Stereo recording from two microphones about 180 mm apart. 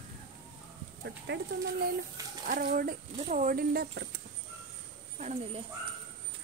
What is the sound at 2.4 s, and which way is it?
Speech, 50° right (ahead or behind).